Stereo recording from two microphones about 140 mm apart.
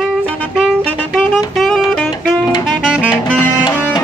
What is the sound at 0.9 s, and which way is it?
Saxophone, 10° left (ahead or behind).